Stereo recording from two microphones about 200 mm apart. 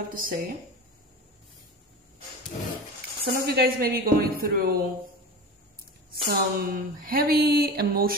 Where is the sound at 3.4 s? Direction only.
50° right (ahead or behind).